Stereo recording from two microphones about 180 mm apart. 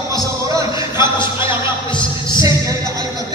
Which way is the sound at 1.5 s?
25° left (ahead or behind).